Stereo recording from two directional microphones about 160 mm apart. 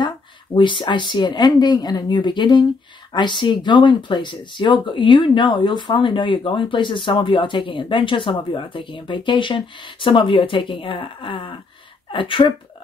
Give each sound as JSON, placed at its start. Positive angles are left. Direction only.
{"t": 0.6, "sound": "speech", "side_deg": 30}